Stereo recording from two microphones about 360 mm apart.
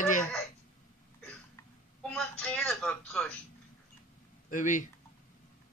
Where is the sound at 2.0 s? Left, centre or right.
Centre.